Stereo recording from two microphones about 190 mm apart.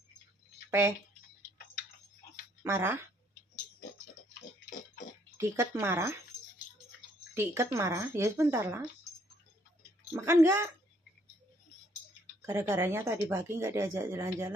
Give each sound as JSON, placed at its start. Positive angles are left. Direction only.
{"t": 0.7, "sound": "speech", "side_deg": -15}
{"t": 2.6, "sound": "speech", "side_deg": -15}
{"t": 5.4, "sound": "speech", "side_deg": -15}
{"t": 7.3, "sound": "speech", "side_deg": -15}
{"t": 10.1, "sound": "speech", "side_deg": -15}
{"t": 12.4, "sound": "speech", "side_deg": -15}